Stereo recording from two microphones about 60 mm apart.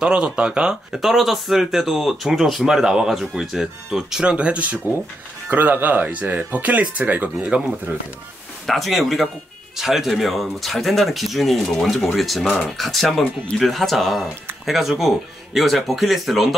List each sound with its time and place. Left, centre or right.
0.0 s speech: centre
8.6 s speech: centre